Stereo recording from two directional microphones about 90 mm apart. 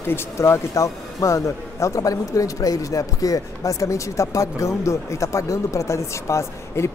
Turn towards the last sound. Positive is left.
turn(degrees=30)  # may be behind; listen again after turning